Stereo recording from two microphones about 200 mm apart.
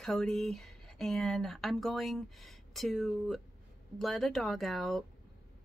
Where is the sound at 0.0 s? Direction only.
Centre (ahead or behind).